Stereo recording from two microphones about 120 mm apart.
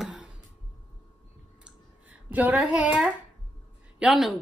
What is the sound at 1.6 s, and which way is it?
Clicking, 15° right (ahead or behind).